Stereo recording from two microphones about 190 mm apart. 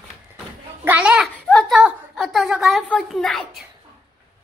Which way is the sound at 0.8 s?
5° right (ahead or behind).